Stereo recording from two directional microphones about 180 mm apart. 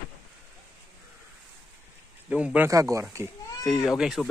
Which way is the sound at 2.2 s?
10° right (ahead or behind).